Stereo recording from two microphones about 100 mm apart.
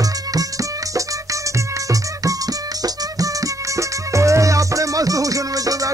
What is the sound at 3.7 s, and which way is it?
Music, 30° right (ahead or behind).